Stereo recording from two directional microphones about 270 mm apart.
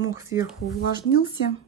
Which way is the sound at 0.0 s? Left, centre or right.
Centre.